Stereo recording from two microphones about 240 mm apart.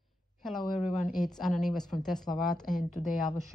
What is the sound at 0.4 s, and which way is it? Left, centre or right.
A woman's voice, centre.